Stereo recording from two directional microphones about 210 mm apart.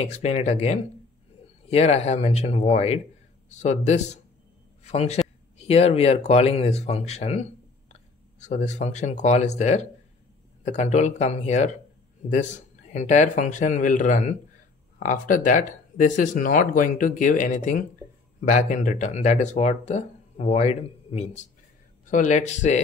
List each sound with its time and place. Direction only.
0.0 s speech: 30° left (ahead or behind)
12.9 s speech: 35° left (ahead or behind)